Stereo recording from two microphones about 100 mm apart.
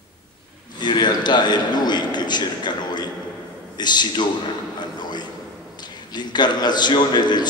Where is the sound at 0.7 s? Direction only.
50° left (ahead or behind).